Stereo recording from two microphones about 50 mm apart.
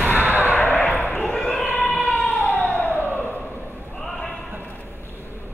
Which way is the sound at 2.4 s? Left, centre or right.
Left.